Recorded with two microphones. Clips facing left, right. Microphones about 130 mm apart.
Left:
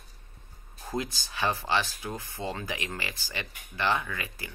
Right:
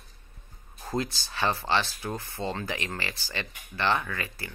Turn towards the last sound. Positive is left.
turn(degrees=15)  # may be behind; listen again after turning